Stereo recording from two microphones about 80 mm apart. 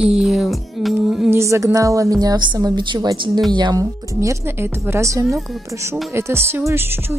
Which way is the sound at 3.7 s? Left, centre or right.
Right.